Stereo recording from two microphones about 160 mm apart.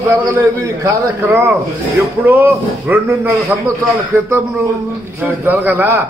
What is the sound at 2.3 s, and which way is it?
A man's voice, 10° right (ahead or behind).